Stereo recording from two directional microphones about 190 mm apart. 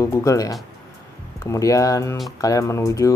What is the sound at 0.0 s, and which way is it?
Speech, 15° left (ahead or behind).